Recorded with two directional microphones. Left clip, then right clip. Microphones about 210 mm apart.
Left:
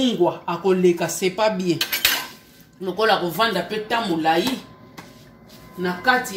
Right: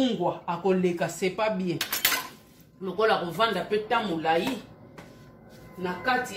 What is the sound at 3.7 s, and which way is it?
Speech, 55° left (ahead or behind).